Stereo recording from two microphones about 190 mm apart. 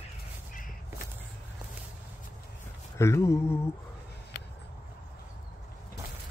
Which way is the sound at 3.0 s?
15° left (ahead or behind).